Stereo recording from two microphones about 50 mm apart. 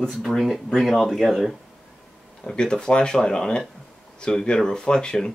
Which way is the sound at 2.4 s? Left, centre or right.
Centre.